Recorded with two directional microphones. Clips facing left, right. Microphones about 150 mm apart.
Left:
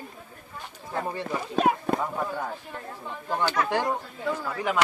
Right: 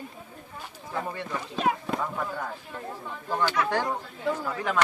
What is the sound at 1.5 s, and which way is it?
Speech, 50° left (ahead or behind).